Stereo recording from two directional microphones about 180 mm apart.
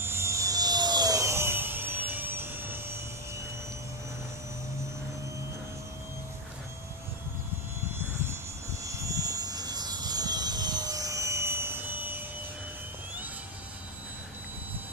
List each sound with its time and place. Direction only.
0.0 s helicopter: 15° right (ahead or behind)
8.8 s vehicle: 20° right (ahead or behind)